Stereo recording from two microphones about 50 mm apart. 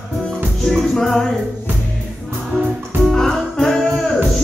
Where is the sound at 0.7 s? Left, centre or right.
Centre.